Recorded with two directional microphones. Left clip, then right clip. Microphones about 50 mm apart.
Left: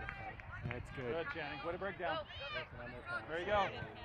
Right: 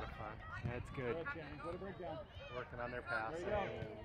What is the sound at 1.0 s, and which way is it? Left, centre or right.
Speech, left.